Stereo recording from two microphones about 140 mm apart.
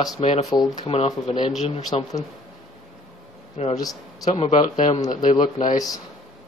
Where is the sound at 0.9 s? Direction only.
45° left (ahead or behind).